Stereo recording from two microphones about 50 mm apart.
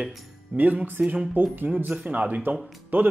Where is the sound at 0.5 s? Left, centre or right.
Right.